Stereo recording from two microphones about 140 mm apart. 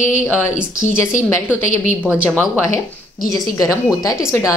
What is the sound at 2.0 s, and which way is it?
Speech, 10° right (ahead or behind).